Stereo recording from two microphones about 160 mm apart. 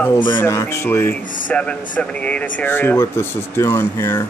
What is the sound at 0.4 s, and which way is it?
Speech, 15° left (ahead or behind).